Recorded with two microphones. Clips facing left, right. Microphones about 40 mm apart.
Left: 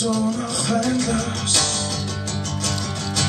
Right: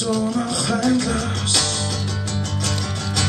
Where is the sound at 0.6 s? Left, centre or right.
Centre.